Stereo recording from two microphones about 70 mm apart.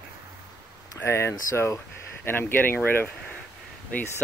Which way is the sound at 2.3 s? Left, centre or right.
Left.